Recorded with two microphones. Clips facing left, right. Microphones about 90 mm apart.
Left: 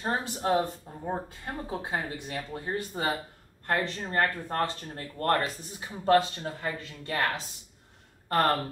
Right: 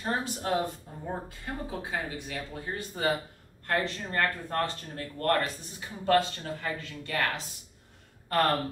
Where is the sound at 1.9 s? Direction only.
30° left (ahead or behind).